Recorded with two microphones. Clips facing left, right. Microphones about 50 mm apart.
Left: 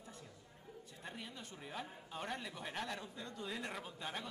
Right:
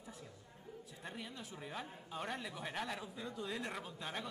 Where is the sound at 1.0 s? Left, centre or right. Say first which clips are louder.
Right 1 dB; centre.